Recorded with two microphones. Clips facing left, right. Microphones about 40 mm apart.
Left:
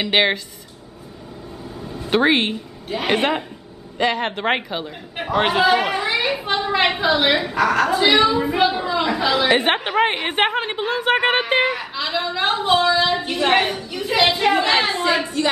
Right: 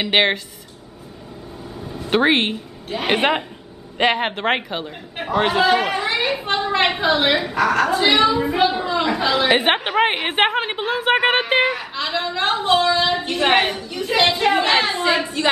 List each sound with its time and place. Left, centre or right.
0.0 s speech: centre
1.8 s a sound: centre
3.1 s a woman's voice: centre